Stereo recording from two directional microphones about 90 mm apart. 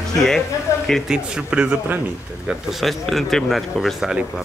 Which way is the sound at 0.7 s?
35° left (ahead or behind).